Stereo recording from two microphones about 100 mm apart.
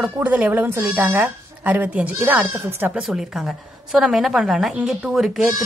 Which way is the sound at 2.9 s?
5° right (ahead or behind).